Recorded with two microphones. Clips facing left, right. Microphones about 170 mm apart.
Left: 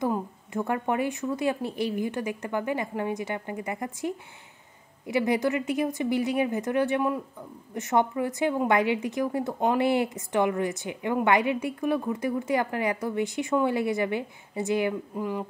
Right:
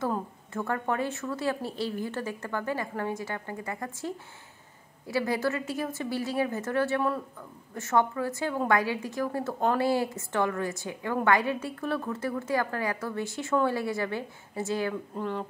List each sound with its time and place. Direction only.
0.0 s a woman's voice: 15° left (ahead or behind)